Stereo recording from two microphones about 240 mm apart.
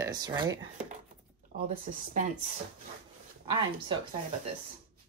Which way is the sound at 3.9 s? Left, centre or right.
Centre.